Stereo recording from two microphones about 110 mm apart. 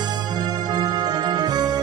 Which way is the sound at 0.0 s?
40° right (ahead or behind).